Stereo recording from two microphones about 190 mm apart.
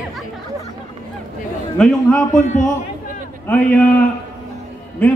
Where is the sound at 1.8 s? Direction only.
5° left (ahead or behind).